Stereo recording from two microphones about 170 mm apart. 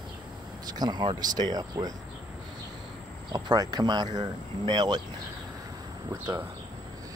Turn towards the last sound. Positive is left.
turn(degrees=-15)  # may be behind; listen again after turning